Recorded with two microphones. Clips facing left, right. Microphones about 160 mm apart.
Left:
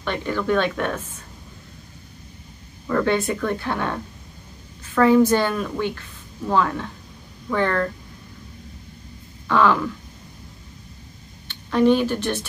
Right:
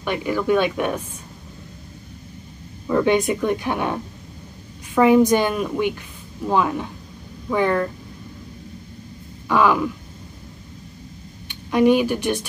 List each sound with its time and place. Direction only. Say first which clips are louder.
0.0 s a woman's voice: right 2 dB; 10° right (ahead or behind)
2.9 s a woman's voice: right 3 dB; 15° right (ahead or behind)
9.5 s a woman's voice: right 1 dB; 10° right (ahead or behind)
11.4 s a woman's voice: right 1 dB; 10° right (ahead or behind)